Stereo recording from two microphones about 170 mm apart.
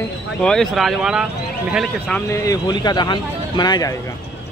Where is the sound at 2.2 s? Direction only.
20° left (ahead or behind).